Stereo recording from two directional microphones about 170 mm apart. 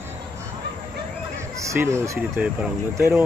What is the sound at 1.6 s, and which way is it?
Speech, 15° right (ahead or behind).